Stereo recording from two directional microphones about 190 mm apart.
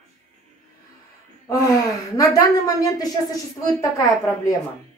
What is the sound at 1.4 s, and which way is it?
A woman's voice, 20° left (ahead or behind).